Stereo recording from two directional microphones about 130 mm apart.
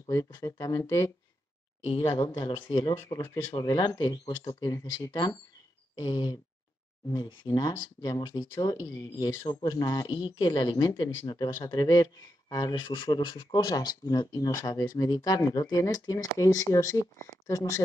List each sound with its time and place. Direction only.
0.1 s speech: 25° left (ahead or behind)
2.3 s speech: 35° left (ahead or behind)
3.0 s speech: 20° left (ahead or behind)
3.5 s speech: 35° left (ahead or behind)